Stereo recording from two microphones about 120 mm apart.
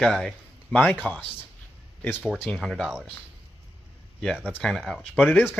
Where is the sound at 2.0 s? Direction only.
20° left (ahead or behind).